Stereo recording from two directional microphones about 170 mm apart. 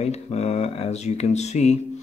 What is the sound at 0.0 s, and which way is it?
Speech, 40° left (ahead or behind).